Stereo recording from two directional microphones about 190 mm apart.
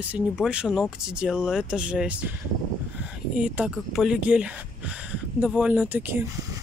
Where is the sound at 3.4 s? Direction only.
5° right (ahead or behind).